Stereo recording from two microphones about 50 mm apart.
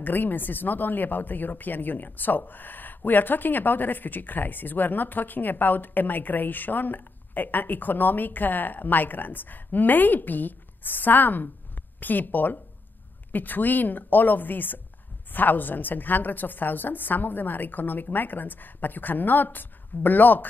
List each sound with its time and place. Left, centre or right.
0.0 s speech: left